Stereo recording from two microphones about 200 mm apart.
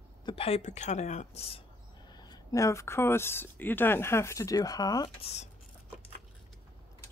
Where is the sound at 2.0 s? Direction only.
20° left (ahead or behind).